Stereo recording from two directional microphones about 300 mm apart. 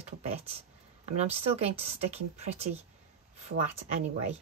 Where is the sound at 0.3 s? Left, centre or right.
Centre.